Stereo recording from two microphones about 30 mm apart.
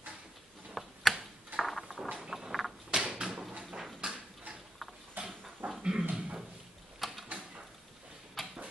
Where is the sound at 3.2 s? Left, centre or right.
Right.